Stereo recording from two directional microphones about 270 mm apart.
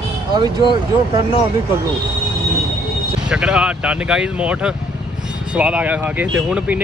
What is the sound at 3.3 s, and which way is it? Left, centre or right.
Speech, centre.